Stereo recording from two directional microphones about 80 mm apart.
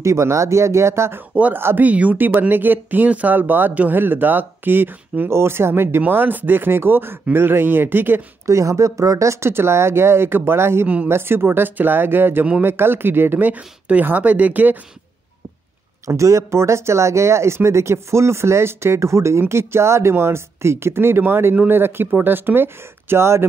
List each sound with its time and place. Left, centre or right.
0.0 s speech: right
1.3 s speech: centre
1.6 s speech: right
1.9 s speech: centre
8.5 s speech: right
16.1 s speech: right